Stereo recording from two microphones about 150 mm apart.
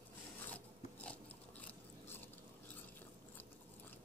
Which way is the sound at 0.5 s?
10° left (ahead or behind).